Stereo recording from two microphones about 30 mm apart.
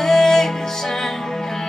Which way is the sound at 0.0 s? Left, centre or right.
Centre.